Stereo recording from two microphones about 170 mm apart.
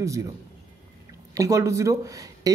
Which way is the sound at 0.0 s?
20° right (ahead or behind).